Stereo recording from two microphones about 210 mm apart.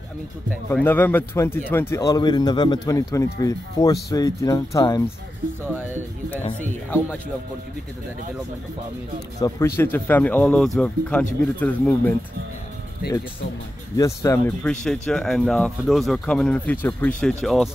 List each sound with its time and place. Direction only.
0.7 s speech: 10° left (ahead or behind)
9.4 s speech: 20° left (ahead or behind)
13.9 s speech: 15° left (ahead or behind)